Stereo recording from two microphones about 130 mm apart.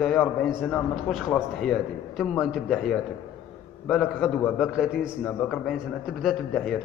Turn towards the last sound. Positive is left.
turn(degrees=5)  # may be behind; listen again after turning